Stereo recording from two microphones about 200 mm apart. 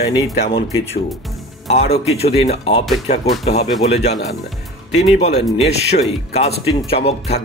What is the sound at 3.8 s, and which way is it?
Speech, 30° left (ahead or behind).